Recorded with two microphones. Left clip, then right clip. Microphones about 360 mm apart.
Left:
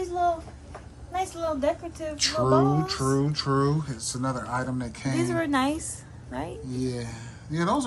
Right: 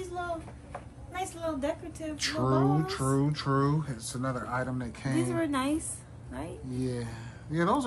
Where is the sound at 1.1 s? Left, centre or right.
Centre.